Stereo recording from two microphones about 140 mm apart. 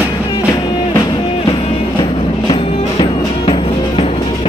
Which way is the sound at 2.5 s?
40° left (ahead or behind).